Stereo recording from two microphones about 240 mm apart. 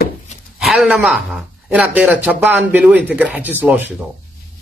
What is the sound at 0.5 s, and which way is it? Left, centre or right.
Speech, centre.